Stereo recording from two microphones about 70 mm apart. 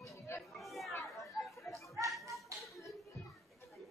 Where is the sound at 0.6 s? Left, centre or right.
Centre.